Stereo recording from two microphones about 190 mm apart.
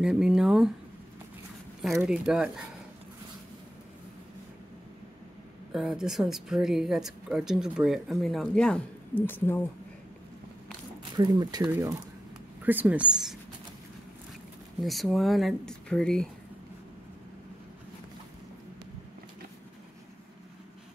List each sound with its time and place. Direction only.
0.0 s speech: 5° right (ahead or behind)
1.8 s a woman's voice: centre (ahead or behind)
5.7 s a woman's voice: centre (ahead or behind)
11.1 s speech: 20° right (ahead or behind); by 13.4 s 5° right (ahead or behind)
14.8 s a woman's voice: centre (ahead or behind)